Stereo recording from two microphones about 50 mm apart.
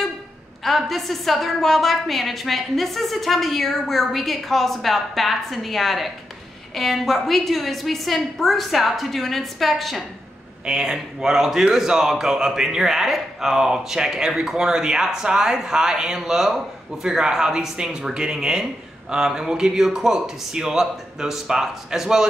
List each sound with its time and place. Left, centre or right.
0.7 s a woman's voice: centre
10.6 s a man's voice: centre